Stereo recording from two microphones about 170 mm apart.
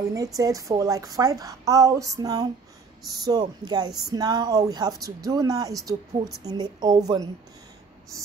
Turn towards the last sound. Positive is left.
turn(degrees=-25)  # may be behind; listen again after turning